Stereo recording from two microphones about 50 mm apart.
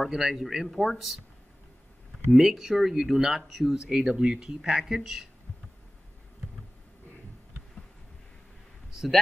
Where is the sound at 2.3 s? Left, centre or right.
Centre.